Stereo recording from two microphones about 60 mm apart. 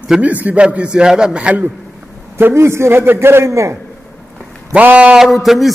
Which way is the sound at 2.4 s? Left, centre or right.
Right.